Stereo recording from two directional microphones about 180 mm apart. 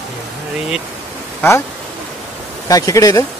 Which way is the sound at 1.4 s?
15° left (ahead or behind).